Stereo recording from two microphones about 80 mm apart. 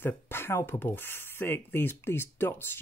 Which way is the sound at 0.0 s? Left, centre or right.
Left.